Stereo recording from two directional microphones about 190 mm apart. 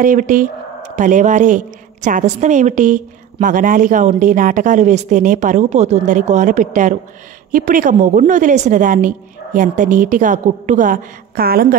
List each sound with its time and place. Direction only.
0.0 s a woman's voice: 45° right (ahead or behind)